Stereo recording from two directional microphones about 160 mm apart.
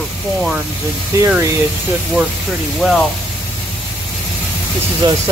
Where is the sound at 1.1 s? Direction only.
15° right (ahead or behind).